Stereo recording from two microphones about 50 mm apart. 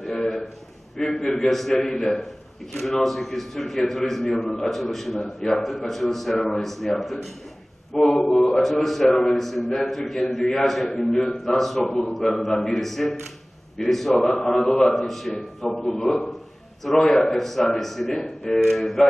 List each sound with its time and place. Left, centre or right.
0.0 s a sound: centre
0.9 s a man's voice: centre
15.6 s speech: centre